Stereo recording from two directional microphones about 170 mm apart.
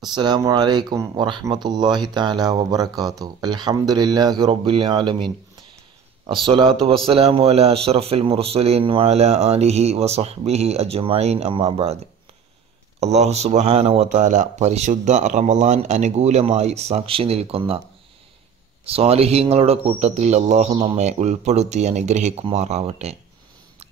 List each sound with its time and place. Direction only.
0.1 s a man's voice: 25° right (ahead or behind)
13.0 s a man's voice: 40° right (ahead or behind)
18.9 s a man's voice: 35° right (ahead or behind)